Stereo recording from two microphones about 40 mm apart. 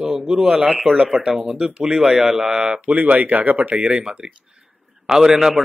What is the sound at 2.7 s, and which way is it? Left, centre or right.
Speech, right.